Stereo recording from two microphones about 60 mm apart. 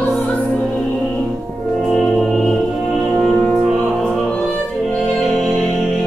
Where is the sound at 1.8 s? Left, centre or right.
Centre.